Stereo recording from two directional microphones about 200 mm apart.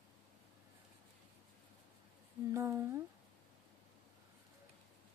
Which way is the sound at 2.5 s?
15° right (ahead or behind).